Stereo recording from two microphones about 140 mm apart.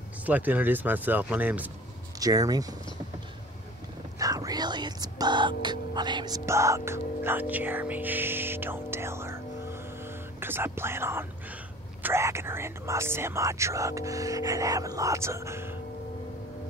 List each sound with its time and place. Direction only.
0.2 s speech: 10° right (ahead or behind)
2.1 s speech: 25° right (ahead or behind)
4.2 s speech: 25° right (ahead or behind)